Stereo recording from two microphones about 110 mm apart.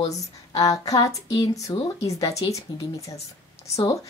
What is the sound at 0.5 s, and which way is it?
A woman's voice, 35° left (ahead or behind).